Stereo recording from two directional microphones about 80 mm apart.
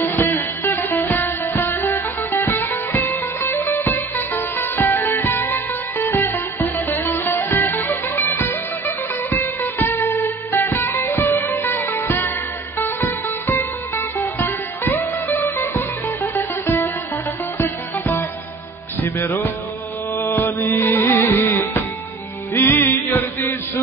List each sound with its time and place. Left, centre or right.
0.0 s music: left